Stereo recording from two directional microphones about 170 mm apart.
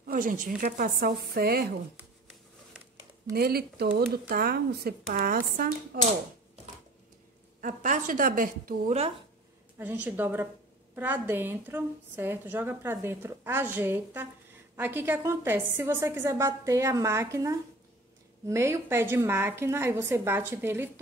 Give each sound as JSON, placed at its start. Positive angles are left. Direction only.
{"t": 0.0, "sound": "a sound", "side_deg": -55}
{"t": 0.6, "sound": "speech", "side_deg": -55}
{"t": 3.3, "sound": "speech", "side_deg": -65}
{"t": 7.6, "sound": "a woman's voice", "side_deg": -45}
{"t": 9.8, "sound": "a woman's voice", "side_deg": -10}